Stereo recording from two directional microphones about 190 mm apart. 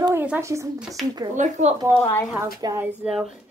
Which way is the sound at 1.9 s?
10° left (ahead or behind).